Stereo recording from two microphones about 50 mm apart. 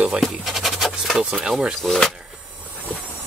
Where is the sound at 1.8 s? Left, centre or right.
Centre.